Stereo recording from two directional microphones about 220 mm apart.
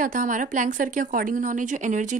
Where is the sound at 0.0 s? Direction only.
35° right (ahead or behind).